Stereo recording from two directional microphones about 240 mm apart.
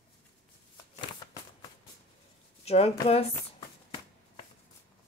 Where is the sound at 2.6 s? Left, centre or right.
Left.